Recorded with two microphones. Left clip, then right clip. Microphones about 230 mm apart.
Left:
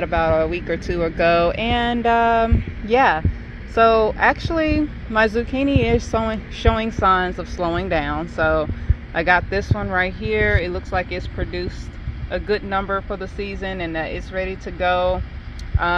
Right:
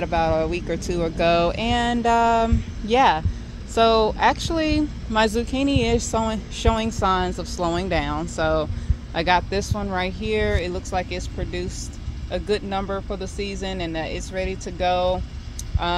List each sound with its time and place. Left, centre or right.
0.0 s speech: centre